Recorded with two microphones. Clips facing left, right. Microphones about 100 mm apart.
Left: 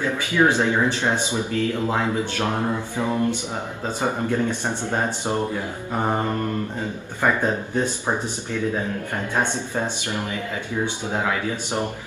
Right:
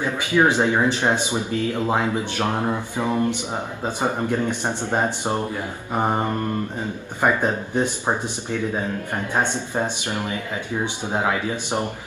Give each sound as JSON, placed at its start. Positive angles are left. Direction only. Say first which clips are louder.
{"t": 0.0, "sound": "speech", "louder": "right 1 dB", "side_deg": -20}
{"t": 7.2, "sound": "speech", "louder": "right 1 dB", "side_deg": -15}